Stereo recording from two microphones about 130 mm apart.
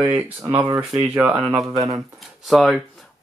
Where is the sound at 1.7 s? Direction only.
25° right (ahead or behind).